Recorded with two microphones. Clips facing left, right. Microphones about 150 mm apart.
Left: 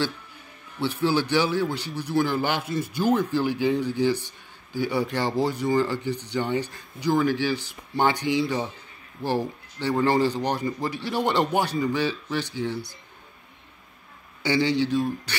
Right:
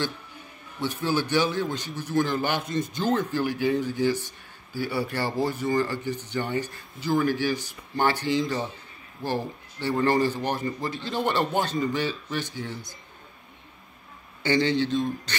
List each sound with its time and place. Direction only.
0.7 s a man's voice: 15° right (ahead or behind)
1.0 s a man's voice: 10° left (ahead or behind)
14.4 s a man's voice: 10° left (ahead or behind)